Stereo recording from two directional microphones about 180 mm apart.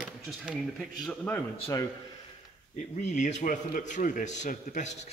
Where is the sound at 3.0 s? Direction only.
40° left (ahead or behind).